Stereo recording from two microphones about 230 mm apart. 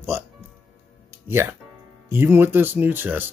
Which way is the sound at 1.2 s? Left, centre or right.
Centre.